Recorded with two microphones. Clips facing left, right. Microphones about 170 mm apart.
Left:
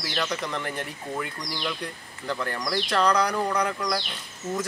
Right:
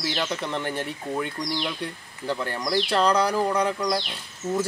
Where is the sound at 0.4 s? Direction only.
30° right (ahead or behind).